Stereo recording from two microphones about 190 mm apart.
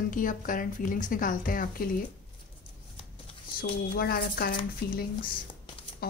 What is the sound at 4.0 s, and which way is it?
Speech, 55° left (ahead or behind).